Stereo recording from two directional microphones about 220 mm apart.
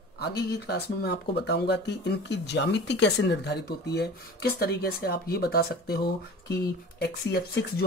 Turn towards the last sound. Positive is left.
turn(degrees=50)  # may be behind; listen again after turning